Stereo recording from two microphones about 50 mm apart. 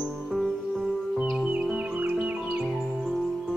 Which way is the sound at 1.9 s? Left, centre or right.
Right.